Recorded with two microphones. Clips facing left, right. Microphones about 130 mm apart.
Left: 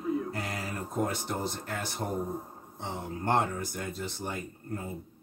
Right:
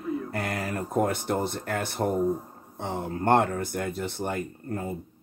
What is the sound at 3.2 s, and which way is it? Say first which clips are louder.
Speech: right 6 dB; 60° right (ahead or behind).